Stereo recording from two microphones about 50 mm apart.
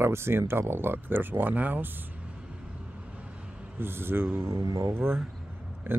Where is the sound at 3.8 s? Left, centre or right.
Right.